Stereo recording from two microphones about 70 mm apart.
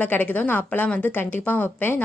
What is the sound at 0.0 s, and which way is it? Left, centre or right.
Speech, left.